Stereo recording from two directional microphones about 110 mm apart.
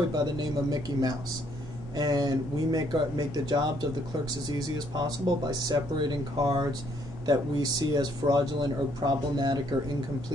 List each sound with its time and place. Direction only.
0.1 s speech: 40° right (ahead or behind)